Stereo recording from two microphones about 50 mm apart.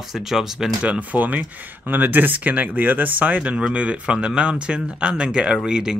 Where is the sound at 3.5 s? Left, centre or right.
Right.